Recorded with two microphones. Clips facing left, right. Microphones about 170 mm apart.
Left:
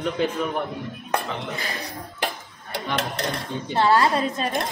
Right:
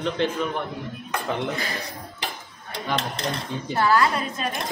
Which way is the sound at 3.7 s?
25° left (ahead or behind).